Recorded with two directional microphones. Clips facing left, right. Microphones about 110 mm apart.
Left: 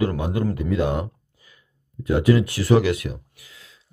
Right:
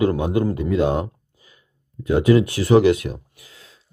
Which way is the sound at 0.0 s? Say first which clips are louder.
Right 4 dB; 20° right (ahead or behind).